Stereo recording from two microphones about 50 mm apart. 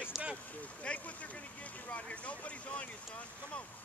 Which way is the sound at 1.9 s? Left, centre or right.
Left.